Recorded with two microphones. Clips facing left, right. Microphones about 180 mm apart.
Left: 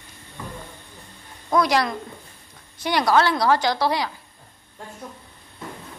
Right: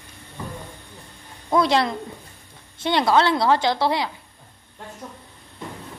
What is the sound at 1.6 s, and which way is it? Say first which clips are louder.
A woman's voice: right 1 dB; 25° right (ahead or behind).